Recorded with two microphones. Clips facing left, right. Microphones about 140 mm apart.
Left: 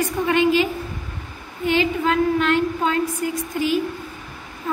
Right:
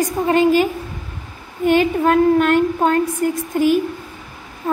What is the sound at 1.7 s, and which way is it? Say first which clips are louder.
A woman's voice: right 5 dB; 50° right (ahead or behind).